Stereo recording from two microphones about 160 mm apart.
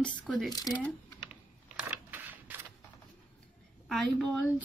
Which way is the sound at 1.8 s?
10° right (ahead or behind).